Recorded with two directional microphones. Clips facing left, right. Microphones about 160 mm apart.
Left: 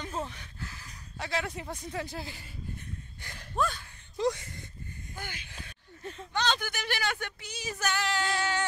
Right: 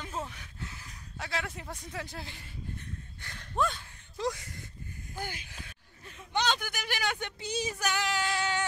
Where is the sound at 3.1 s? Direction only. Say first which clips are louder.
Left 1 dB; 15° left (ahead or behind).